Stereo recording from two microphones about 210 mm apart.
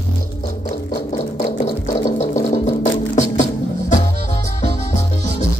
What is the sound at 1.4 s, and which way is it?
Music, 30° left (ahead or behind).